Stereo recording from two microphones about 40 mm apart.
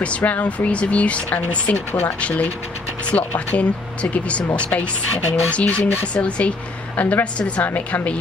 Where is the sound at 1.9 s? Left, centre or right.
Left.